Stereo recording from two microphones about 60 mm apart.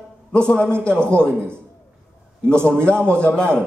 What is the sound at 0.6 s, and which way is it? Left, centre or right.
Speech, right.